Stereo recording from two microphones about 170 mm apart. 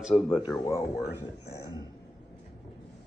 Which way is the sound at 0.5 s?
15° left (ahead or behind).